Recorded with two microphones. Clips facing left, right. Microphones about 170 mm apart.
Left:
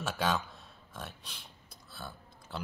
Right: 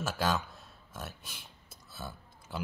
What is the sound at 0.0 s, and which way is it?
Speech, centre (ahead or behind).